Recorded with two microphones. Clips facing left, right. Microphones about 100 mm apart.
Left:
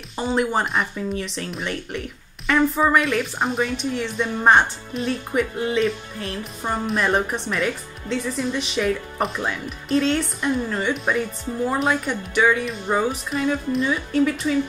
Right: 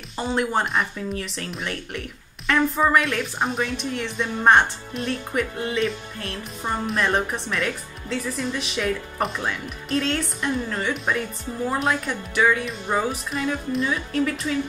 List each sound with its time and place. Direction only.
0.1 s speech: centre (ahead or behind)